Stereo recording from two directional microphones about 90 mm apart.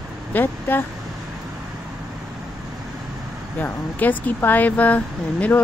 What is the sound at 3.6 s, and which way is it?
Speech, 20° left (ahead or behind).